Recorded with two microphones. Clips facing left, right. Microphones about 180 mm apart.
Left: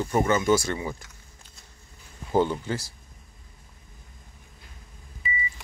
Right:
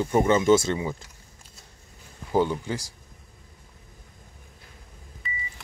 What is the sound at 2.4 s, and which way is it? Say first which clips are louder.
Speech: even; 10° right (ahead or behind).